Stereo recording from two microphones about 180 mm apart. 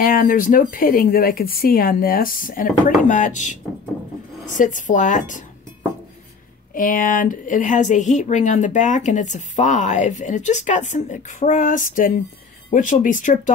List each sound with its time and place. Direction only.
0.0 s a woman's voice: 50° left (ahead or behind)
6.7 s a woman's voice: 50° left (ahead or behind)